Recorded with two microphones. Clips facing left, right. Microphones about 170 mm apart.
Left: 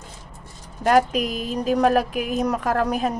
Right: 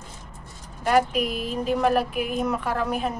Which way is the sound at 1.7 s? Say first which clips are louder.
Left 3 dB; 40° left (ahead or behind).